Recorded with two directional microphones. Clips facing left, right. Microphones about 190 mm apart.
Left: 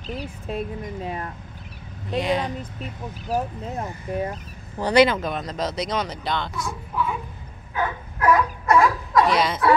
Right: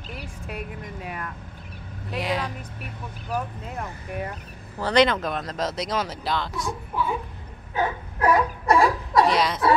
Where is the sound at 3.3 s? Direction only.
30° left (ahead or behind).